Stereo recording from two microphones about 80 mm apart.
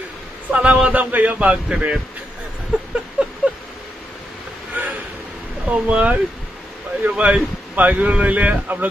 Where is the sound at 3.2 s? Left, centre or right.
Centre.